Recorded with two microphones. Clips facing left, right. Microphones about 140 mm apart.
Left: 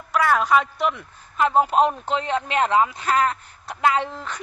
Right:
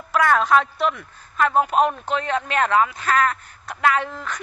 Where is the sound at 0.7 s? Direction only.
20° left (ahead or behind).